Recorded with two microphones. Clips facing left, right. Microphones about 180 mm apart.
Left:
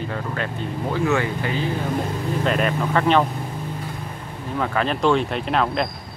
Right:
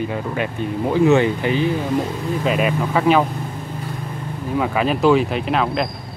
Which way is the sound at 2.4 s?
5° right (ahead or behind).